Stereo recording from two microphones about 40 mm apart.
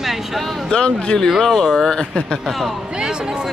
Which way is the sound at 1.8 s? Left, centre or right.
Centre.